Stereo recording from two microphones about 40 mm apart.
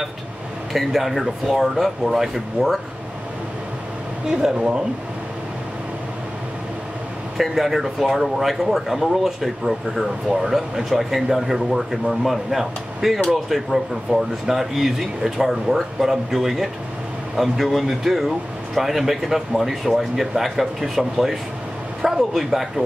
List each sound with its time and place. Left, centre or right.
0.7 s speech: centre
4.3 s speech: centre
7.5 s speech: centre